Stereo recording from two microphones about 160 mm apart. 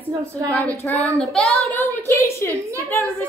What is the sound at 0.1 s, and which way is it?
Speech, 20° right (ahead or behind).